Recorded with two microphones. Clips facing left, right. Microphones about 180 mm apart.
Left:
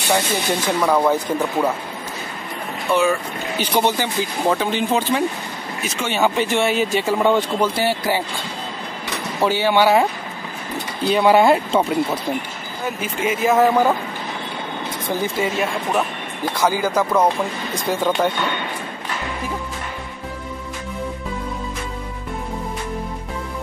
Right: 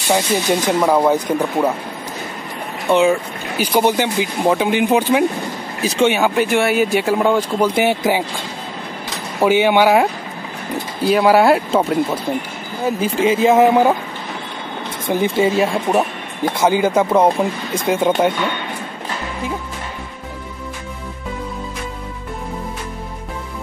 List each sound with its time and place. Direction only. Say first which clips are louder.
0.1 s speech: right 4 dB; 20° right (ahead or behind)
2.9 s speech: right 4 dB; 20° right (ahead or behind)
3.5 s speech: right 4 dB; 10° right (ahead or behind)
5.8 s speech: right 11 dB; 35° right (ahead or behind)
6.0 s speech: right 3 dB; 10° right (ahead or behind)
7.6 s speech: right 4 dB; 20° right (ahead or behind)
9.4 s speech: right 4 dB; 15° right (ahead or behind)
11.1 s speech: right 2 dB; 5° right (ahead or behind)
13.0 s speech: right 6 dB; 30° right (ahead or behind)
15.0 s speech: right 6 dB; 20° right (ahead or behind)